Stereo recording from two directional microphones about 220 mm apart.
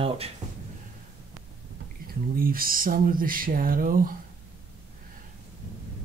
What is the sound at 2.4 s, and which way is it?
Speech, 40° right (ahead or behind).